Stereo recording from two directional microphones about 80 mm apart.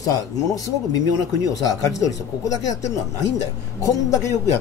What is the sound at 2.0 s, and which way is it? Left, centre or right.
Speech, left.